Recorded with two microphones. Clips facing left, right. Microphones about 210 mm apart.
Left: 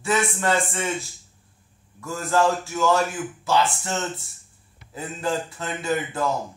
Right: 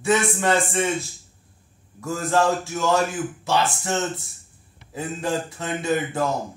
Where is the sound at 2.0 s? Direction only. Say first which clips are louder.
Right 1 dB; 20° right (ahead or behind).